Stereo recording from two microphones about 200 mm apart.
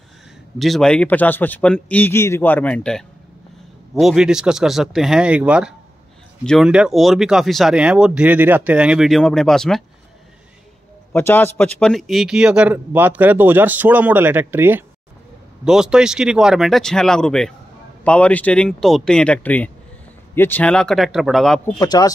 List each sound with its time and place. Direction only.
0.6 s a man's voice: centre (ahead or behind)
11.1 s a man's voice: 10° left (ahead or behind)
21.8 s speech: 20° left (ahead or behind)